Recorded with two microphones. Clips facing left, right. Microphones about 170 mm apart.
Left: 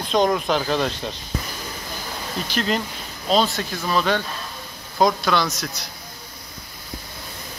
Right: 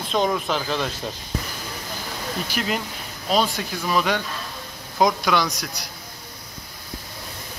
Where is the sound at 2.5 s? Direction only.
10° right (ahead or behind).